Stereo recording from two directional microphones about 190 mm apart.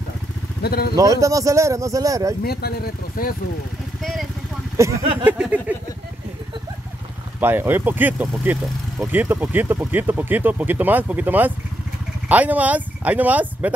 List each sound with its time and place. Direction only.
0.6 s speech: 55° left (ahead or behind)
0.9 s speech: 15° right (ahead or behind)
2.4 s speech: 55° left (ahead or behind)
4.7 s speech: 15° right (ahead or behind)
7.3 s speech: 10° right (ahead or behind)